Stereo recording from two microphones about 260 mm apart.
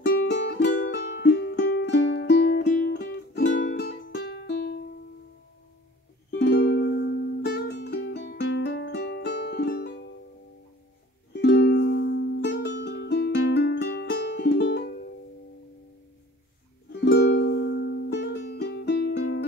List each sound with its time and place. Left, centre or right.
0.2 s music: left
6.3 s music: left
11.3 s music: left
16.9 s music: left